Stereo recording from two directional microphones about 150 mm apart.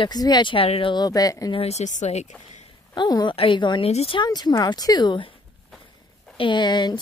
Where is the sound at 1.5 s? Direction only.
45° left (ahead or behind).